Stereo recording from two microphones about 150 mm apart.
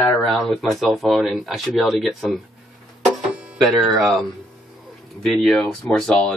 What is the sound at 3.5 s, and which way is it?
Speech, centre (ahead or behind).